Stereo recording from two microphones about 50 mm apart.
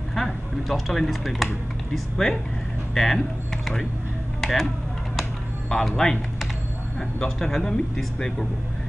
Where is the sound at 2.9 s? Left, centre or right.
Centre.